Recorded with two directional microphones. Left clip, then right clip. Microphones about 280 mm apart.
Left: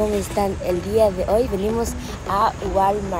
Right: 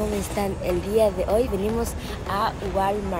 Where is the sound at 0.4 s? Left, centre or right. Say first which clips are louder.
Left 3 dB; centre.